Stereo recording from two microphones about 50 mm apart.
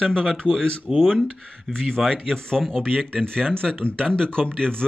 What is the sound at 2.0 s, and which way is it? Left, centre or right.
Speech, centre.